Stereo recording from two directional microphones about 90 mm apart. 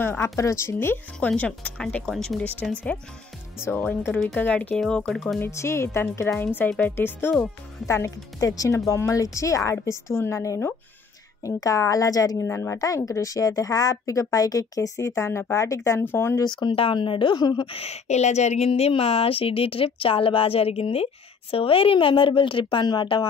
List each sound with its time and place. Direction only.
0.0 s speech: 25° left (ahead or behind)
1.3 s speech: 15° left (ahead or behind)
2.0 s speech: 5° left (ahead or behind)
4.1 s speech: centre (ahead or behind)
4.4 s speech: 15° left (ahead or behind)
4.7 s speech: 5° left (ahead or behind)
5.4 s speech: 30° left (ahead or behind)
7.8 s speech: 35° left (ahead or behind)
12.4 s speech: 30° left (ahead or behind)
12.7 s speech: 40° left (ahead or behind); by 16.3 s 25° left (ahead or behind)
16.4 s a woman's voice: 55° left (ahead or behind)
16.7 s a woman's voice: 80° left; by 17.6 s 55° left (ahead or behind)
18.7 s speech: 90° left; by 23.2 s 60° left (ahead or behind)